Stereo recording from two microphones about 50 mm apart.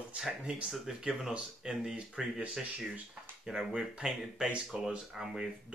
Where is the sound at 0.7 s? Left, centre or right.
Centre.